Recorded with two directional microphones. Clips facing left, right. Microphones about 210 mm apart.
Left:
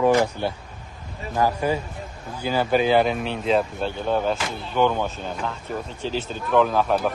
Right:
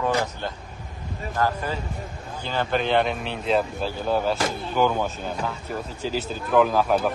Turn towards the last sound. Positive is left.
turn(degrees=-5)  # may be behind; listen again after turning